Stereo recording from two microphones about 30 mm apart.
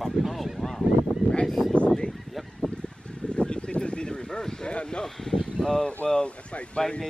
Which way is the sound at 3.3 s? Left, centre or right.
Left.